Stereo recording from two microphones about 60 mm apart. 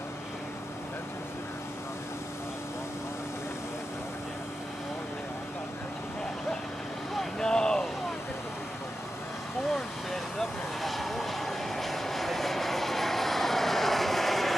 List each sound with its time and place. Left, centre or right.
7.2 s vehicle: centre
9.7 s vehicle: centre